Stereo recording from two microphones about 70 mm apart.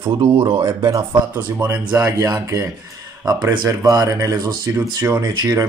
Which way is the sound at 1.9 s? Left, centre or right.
Right.